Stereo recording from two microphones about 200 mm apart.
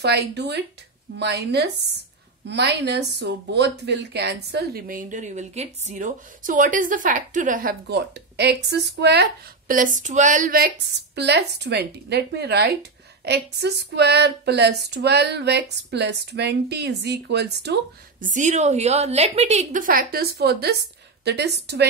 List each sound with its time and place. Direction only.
0.0 s a woman's voice: 55° right (ahead or behind)
11.1 s speech: 60° right (ahead or behind)
18.2 s a woman's voice: 40° right (ahead or behind); by 21.8 s 55° right (ahead or behind)